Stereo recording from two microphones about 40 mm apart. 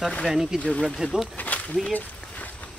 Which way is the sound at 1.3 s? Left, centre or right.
Left.